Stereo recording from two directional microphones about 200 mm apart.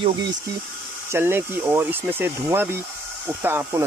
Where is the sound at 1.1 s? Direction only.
10° right (ahead or behind).